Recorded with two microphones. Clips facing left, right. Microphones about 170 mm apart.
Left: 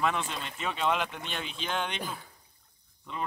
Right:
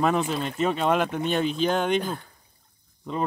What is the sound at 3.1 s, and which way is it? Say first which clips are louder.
Speech: right 9 dB; 40° right (ahead or behind).